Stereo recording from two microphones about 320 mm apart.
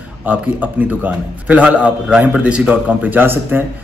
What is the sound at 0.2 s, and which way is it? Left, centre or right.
Speech, centre.